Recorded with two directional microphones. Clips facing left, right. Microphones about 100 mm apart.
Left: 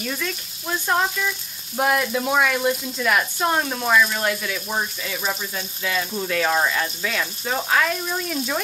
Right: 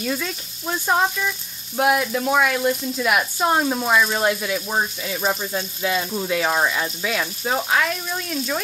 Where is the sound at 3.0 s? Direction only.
15° right (ahead or behind); by 8.6 s 5° left (ahead or behind).